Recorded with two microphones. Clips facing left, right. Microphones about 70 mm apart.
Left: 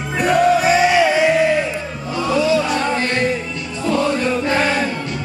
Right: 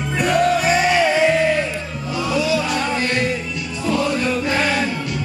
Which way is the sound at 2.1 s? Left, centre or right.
Centre.